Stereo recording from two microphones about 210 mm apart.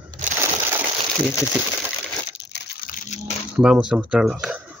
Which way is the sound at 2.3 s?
55° left (ahead or behind).